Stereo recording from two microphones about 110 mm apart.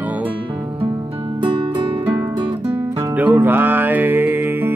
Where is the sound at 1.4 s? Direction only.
50° right (ahead or behind).